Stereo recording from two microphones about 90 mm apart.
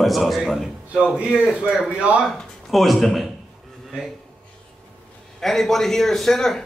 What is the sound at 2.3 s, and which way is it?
Speech, centre (ahead or behind).